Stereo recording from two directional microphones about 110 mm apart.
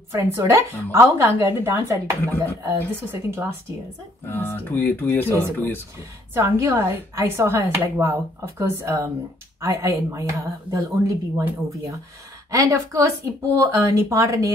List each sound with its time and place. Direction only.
0.1 s speech: 25° right (ahead or behind)
4.3 s speech: 20° left (ahead or behind)
6.3 s speech: 25° right (ahead or behind)
12.4 s speech: 30° right (ahead or behind)